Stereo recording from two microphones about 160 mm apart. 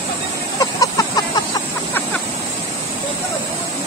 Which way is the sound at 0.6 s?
20° left (ahead or behind).